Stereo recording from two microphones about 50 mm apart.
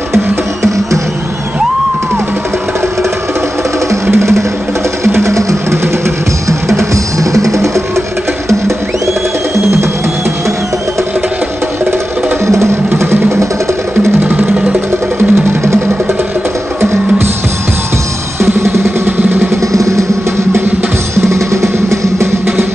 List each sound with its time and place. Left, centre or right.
4.1 s music: right
5.2 s vehicle: right
7.3 s music: right
12.9 s music: right
14.2 s music: right
19.0 s vehicle: right
19.7 s music: right
21.3 s music: right